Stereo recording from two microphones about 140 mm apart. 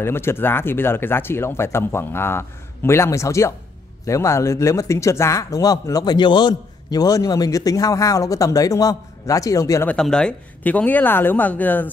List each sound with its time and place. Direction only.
0.0 s speech: 15° left (ahead or behind)
9.8 s speech: 5° left (ahead or behind)